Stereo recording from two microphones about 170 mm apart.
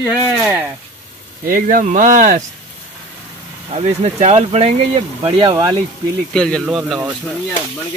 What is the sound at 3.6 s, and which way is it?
Speech, 35° right (ahead or behind).